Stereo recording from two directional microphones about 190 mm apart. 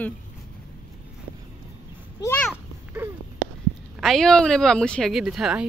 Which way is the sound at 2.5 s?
10° right (ahead or behind).